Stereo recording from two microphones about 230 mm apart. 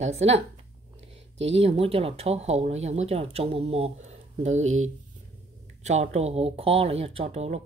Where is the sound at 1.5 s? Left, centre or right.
Right.